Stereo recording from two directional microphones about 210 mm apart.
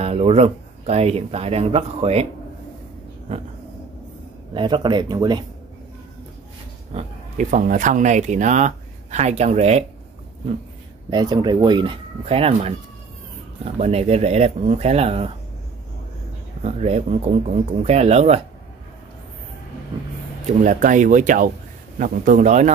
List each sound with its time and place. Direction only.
0.0 s speech: 30° right (ahead or behind)
3.3 s speech: 30° right (ahead or behind)
4.6 s speech: 20° right (ahead or behind)
6.9 s speech: 35° right (ahead or behind)
11.1 s speech: 20° right (ahead or behind)
13.7 s speech: 30° right (ahead or behind)
16.6 s speech: 30° right (ahead or behind)
20.4 s speech: 35° right (ahead or behind)